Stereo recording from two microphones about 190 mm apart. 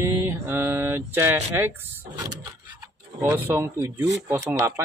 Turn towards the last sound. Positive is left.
turn(degrees=-15)  # may be behind; listen again after turning